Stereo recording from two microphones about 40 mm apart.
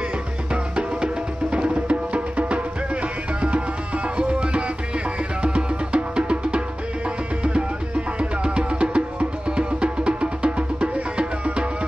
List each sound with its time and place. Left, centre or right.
0.7 s music: right
4.2 s music: right
8.2 s music: right